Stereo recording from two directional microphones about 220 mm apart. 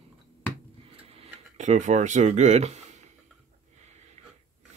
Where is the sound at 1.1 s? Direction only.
30° right (ahead or behind).